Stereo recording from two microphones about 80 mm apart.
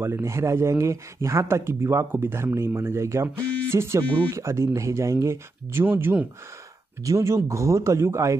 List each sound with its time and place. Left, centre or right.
0.0 s speech: right